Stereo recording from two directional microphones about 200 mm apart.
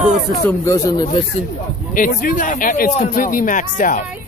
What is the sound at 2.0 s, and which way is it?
A man's voice, 40° left (ahead or behind).